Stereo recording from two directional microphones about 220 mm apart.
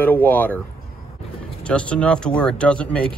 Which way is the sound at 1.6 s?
5° left (ahead or behind).